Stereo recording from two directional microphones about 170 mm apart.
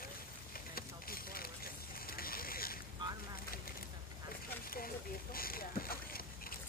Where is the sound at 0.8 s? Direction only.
60° left (ahead or behind).